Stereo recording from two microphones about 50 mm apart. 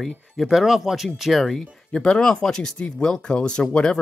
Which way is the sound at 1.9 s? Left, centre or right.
Centre.